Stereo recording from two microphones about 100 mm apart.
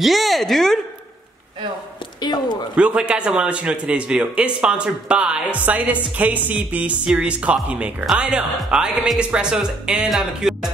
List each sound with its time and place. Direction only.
0.0 s a woman's voice: centre (ahead or behind)
2.2 s speech: 45° left (ahead or behind)
2.7 s a man's voice: 10° right (ahead or behind)